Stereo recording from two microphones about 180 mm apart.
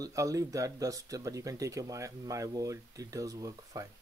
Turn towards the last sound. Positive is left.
turn(degrees=-20)  # may be behind; listen again after turning